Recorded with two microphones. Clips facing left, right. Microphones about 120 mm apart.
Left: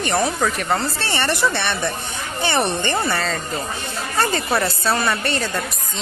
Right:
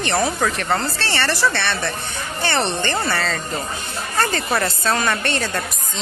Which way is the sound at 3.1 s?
Centre (ahead or behind).